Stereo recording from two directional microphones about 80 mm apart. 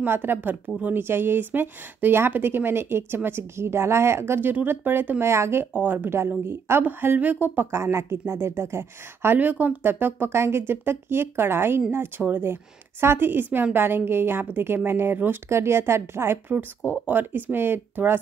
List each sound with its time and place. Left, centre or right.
0.0 s a woman's voice: right
5.7 s speech: right
7.7 s a woman's voice: right